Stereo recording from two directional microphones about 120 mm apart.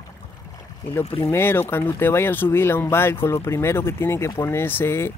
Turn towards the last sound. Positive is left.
turn(degrees=20)  # may be behind; listen again after turning